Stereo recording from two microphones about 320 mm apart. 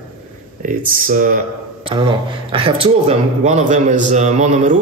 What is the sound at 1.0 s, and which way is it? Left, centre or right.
A man's voice, right.